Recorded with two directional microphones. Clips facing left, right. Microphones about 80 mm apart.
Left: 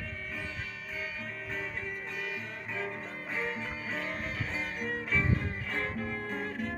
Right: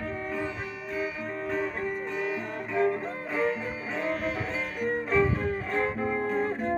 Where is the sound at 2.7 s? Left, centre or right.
Right.